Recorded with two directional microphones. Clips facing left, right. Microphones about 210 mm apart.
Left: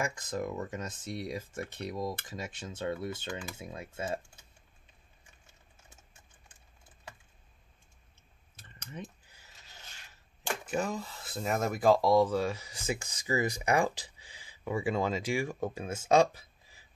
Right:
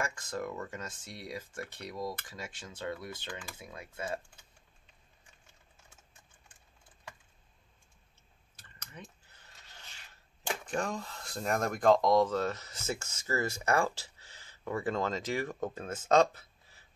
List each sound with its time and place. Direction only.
0.0 s speech: 20° left (ahead or behind)
8.5 s typing: 20° left (ahead or behind)
10.6 s speech: 5° left (ahead or behind)